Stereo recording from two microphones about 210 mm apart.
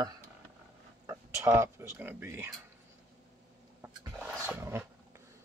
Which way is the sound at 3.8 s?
10° right (ahead or behind).